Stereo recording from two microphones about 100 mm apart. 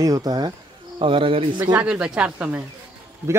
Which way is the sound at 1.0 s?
60° right (ahead or behind).